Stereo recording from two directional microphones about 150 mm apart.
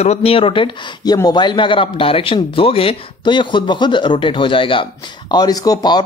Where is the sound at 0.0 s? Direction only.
45° left (ahead or behind).